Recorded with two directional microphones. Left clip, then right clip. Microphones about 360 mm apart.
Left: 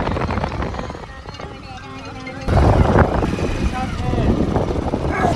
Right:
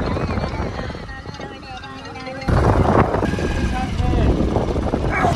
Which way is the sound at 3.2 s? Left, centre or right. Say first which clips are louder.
Even; centre.